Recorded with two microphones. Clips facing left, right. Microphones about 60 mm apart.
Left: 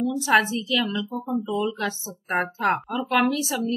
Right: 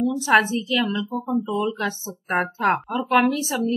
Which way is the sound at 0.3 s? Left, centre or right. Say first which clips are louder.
Right 2 dB; centre.